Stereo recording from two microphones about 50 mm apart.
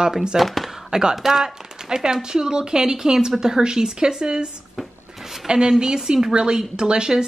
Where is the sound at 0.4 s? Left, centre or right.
Centre.